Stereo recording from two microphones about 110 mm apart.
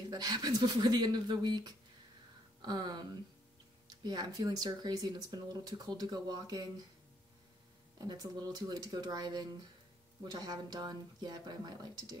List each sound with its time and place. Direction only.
0.1 s speech: 40° right (ahead or behind)
8.0 s speech: 40° right (ahead or behind)